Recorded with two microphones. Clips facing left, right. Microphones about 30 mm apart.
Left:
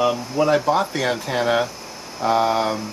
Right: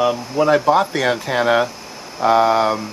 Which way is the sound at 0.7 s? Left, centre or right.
Centre.